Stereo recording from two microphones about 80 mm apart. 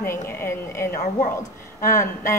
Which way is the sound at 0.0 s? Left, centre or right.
Left.